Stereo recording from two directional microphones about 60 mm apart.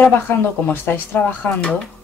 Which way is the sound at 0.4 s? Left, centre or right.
Left.